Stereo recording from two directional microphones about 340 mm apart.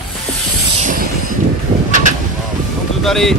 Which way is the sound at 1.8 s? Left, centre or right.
Right.